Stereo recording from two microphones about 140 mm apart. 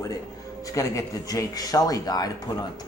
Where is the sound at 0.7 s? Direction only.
20° left (ahead or behind).